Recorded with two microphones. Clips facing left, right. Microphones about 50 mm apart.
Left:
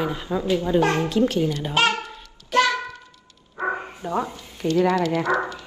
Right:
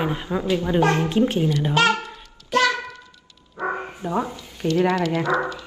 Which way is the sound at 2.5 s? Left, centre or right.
Left.